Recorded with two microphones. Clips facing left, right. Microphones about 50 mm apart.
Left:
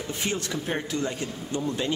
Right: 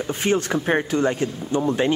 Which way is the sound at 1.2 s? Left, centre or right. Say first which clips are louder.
Right 7 dB; right.